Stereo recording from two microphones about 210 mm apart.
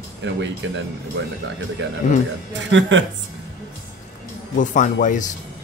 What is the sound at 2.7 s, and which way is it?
Speech, 60° right (ahead or behind).